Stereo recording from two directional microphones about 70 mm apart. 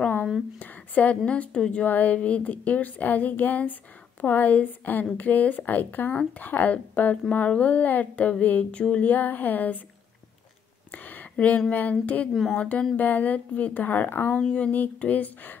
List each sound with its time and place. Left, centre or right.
0.6 s speech: left
1.9 s speech: left
10.9 s a sound: left
11.7 s speech: left
12.3 s speech: centre
12.5 s speech: centre
14.3 s speech: centre